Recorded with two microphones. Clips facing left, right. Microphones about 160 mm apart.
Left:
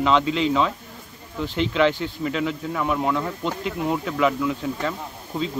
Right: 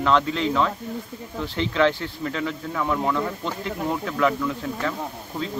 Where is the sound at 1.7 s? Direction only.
10° left (ahead or behind).